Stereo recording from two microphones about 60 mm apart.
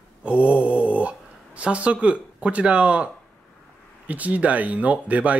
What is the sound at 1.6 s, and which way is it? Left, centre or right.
Speech, right.